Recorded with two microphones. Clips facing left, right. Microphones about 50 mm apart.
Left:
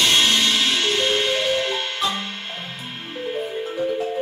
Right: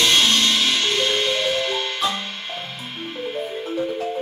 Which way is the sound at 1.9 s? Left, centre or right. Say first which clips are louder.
Right 1 dB; centre.